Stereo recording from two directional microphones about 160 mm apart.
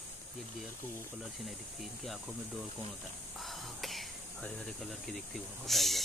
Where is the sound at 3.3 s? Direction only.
Centre (ahead or behind).